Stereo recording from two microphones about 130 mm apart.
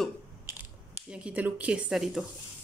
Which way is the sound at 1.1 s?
10° right (ahead or behind).